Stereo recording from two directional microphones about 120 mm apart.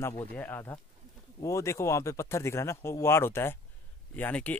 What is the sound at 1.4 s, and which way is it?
Speech, 25° left (ahead or behind).